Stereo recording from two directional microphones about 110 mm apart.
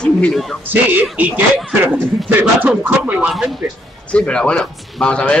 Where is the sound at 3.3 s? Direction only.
5° right (ahead or behind).